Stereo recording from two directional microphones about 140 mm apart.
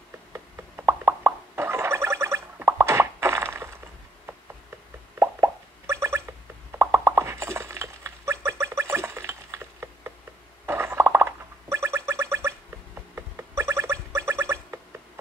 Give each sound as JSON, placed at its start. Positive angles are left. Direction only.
{"t": 0.3, "sound": "plop", "side_deg": -15}
{"t": 5.2, "sound": "plop", "side_deg": -20}
{"t": 6.7, "sound": "a sound", "side_deg": -20}